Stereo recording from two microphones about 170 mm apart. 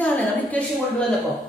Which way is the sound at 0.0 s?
10° left (ahead or behind).